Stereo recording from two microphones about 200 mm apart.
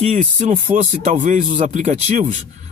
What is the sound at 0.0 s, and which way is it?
Speech, 35° right (ahead or behind).